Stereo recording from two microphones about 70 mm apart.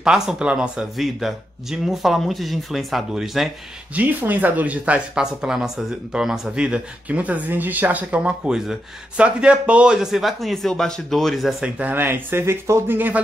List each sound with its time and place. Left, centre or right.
0.0 s speech: centre
0.9 s speech: centre
3.9 s speech: right; by 11.5 s centre
11.6 s speech: right
12.9 s speech: right